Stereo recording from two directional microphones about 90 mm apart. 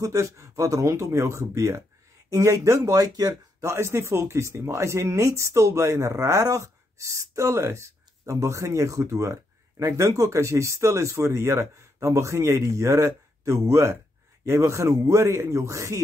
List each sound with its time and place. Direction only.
0.0 s speech: 35° right (ahead or behind)
3.7 s speech: 30° right (ahead or behind)